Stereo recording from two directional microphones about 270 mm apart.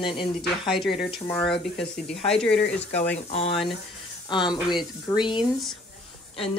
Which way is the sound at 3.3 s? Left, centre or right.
Left.